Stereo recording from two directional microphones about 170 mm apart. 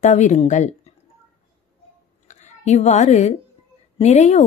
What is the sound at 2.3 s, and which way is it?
A woman's voice, 40° left (ahead or behind).